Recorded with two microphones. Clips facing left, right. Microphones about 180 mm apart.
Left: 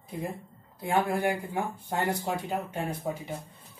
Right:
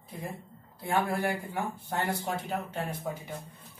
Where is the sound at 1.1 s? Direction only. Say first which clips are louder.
Left 3 dB; 20° left (ahead or behind).